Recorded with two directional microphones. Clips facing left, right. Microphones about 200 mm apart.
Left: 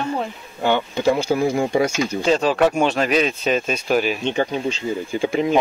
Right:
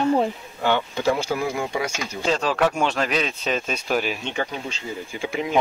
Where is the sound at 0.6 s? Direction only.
20° left (ahead or behind).